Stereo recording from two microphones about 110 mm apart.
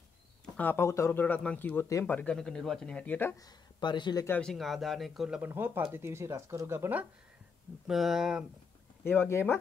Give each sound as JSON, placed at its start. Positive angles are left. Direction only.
{"t": 0.6, "sound": "speech", "side_deg": 20}
{"t": 1.2, "sound": "speech", "side_deg": 10}
{"t": 3.3, "sound": "speech", "side_deg": 40}
{"t": 4.3, "sound": "speech", "side_deg": 5}
{"t": 5.4, "sound": "speech", "side_deg": -20}
{"t": 7.8, "sound": "speech", "side_deg": 0}
{"t": 9.0, "sound": "speech", "side_deg": 20}